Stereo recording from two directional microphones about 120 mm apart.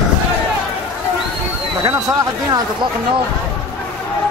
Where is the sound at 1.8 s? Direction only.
30° right (ahead or behind).